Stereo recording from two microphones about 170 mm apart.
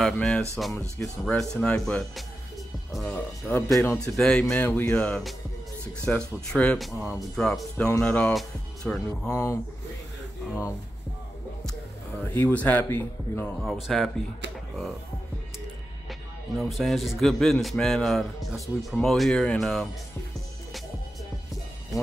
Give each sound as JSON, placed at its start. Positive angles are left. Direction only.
{"t": 0.0, "sound": "speech", "side_deg": 5}
{"t": 9.3, "sound": "speech", "side_deg": 15}
{"t": 12.2, "sound": "speech", "side_deg": 10}
{"t": 13.6, "sound": "speech", "side_deg": 0}
{"t": 16.1, "sound": "speech", "side_deg": 0}